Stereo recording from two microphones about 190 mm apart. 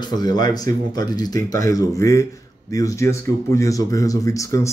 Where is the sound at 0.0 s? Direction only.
20° left (ahead or behind).